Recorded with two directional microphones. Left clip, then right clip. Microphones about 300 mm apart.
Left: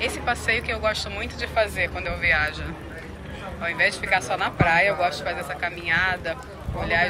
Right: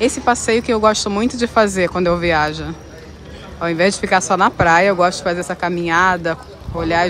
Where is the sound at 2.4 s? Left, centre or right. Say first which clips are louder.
Right 7 dB; centre.